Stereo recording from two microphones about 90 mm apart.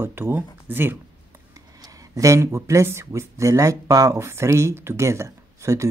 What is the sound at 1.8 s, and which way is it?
Speech, 40° right (ahead or behind).